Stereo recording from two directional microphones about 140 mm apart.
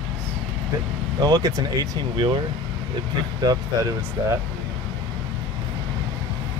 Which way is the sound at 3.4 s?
25° right (ahead or behind).